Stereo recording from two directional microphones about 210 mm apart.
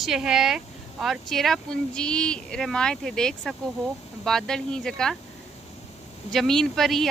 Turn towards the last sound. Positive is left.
turn(degrees=0)  # may be behind; listen again after turning